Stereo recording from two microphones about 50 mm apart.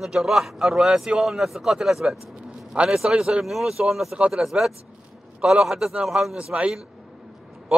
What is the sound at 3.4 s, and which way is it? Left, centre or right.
Speech, centre.